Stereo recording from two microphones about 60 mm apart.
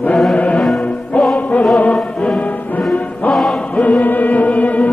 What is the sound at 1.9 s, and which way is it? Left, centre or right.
Music, centre.